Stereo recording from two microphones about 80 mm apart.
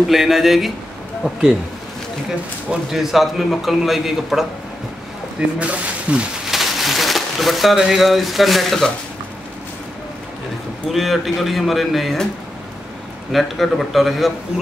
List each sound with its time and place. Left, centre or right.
0.1 s a man's voice: centre
2.7 s a man's voice: centre
5.6 s speech: centre
6.5 s speech: centre
10.9 s a man's voice: centre
13.3 s a man's voice: centre